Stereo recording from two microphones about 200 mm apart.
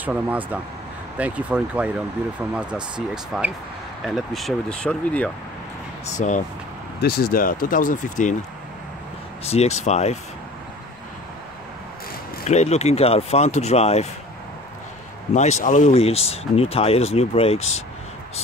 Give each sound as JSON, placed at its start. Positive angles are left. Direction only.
{"t": 0.0, "sound": "speech", "side_deg": -5}
{"t": 6.0, "sound": "speech", "side_deg": 35}
{"t": 7.0, "sound": "speech", "side_deg": 50}
{"t": 9.4, "sound": "speech", "side_deg": 30}
{"t": 12.4, "sound": "speech", "side_deg": 35}
{"t": 15.3, "sound": "speech", "side_deg": 35}
{"t": 17.6, "sound": "speech", "side_deg": 90}